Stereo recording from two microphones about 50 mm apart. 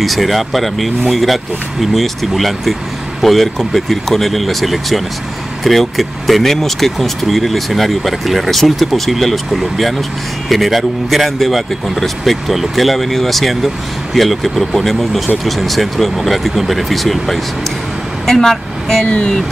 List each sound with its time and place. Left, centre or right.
0.0 s speech: centre
19.0 s speech: left